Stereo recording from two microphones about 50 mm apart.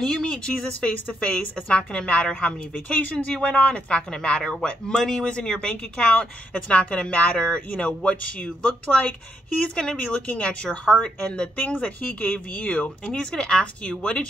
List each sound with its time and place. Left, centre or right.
0.0 s a woman's voice: centre
9.9 s a woman's voice: left
12.2 s a woman's voice: left
13.2 s speech: centre